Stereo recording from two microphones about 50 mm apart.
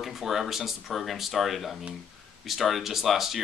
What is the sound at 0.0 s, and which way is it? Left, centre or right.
Speech, centre.